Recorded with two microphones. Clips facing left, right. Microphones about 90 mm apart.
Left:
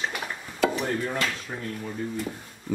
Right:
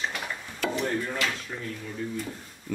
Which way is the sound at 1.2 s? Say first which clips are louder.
Left 1 dB; 35° left (ahead or behind).